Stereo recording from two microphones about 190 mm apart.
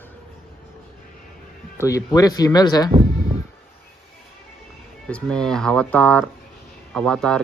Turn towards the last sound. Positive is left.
turn(degrees=5)  # may be behind; listen again after turning